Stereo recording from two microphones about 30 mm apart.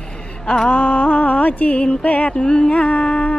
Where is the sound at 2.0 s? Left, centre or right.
Left.